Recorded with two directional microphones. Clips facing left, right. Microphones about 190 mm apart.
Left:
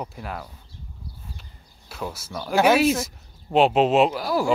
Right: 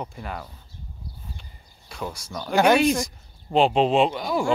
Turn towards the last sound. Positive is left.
turn(degrees=5)  # may be behind; listen again after turning